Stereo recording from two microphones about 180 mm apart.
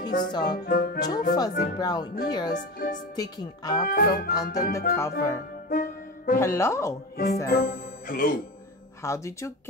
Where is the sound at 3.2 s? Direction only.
20° left (ahead or behind).